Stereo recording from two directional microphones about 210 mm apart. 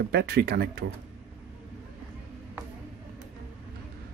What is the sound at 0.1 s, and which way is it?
Speech, 50° right (ahead or behind).